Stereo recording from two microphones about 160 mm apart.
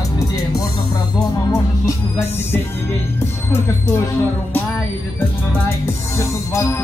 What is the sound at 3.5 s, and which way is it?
Music, 15° left (ahead or behind).